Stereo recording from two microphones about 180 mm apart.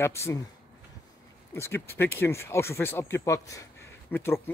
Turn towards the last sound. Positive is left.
turn(degrees=15)  # may be behind; listen again after turning